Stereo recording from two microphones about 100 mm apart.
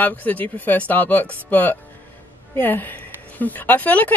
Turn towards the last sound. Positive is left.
turn(degrees=15)  # may be behind; listen again after turning